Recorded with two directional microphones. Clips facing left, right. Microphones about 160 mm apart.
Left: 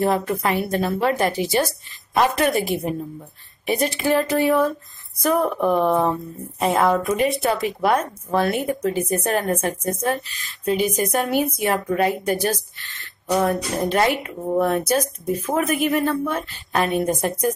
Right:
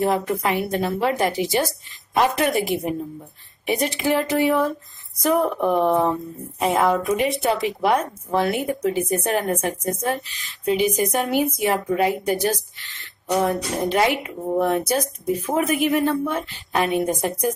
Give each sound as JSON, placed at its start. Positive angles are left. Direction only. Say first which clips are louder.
{"t": 0.0, "sound": "a woman's voice", "louder": "even", "side_deg": -15}